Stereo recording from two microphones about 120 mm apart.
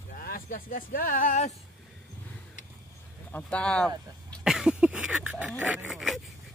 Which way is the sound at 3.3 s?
10° left (ahead or behind).